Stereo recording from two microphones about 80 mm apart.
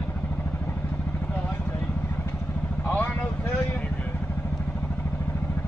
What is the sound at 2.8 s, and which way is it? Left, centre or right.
Vehicle, left.